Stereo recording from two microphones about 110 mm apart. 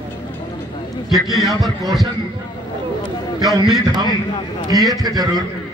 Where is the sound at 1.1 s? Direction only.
Centre (ahead or behind).